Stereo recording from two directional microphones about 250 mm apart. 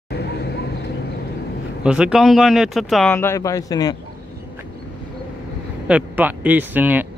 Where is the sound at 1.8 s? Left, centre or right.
Centre.